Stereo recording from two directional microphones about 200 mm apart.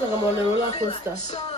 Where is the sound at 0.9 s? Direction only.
35° left (ahead or behind).